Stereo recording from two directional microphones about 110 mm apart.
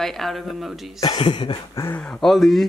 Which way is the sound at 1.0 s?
45° left (ahead or behind).